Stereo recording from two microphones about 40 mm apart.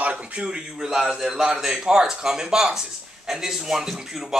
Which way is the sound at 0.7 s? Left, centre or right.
Centre.